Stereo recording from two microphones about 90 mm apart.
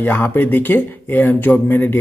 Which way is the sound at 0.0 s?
20° left (ahead or behind).